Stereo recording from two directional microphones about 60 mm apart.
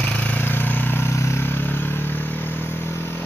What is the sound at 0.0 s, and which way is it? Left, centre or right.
Vehicle, left.